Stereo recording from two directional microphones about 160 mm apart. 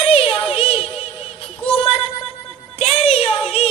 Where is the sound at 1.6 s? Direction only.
35° left (ahead or behind).